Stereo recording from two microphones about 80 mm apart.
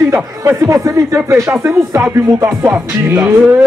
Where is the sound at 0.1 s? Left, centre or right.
Right.